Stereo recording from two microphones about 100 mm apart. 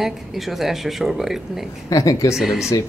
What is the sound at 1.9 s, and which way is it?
Speech, 35° left (ahead or behind).